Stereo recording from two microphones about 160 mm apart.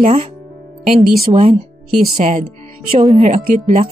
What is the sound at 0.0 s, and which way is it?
Speech, 40° right (ahead or behind).